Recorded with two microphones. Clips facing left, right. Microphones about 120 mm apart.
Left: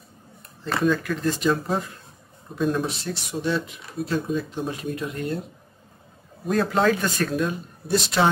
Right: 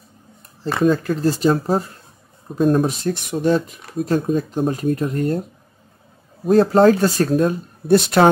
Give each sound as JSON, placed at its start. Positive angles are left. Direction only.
{"t": 0.8, "sound": "speech", "side_deg": -35}
{"t": 6.4, "sound": "speech", "side_deg": -35}
{"t": 7.9, "sound": "speech", "side_deg": -55}